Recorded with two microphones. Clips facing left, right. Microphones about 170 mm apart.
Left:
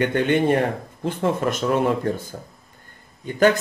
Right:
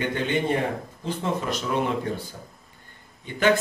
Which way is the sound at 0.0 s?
60° left (ahead or behind).